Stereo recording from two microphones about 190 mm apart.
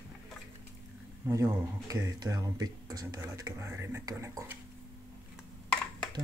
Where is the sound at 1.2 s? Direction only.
15° right (ahead or behind).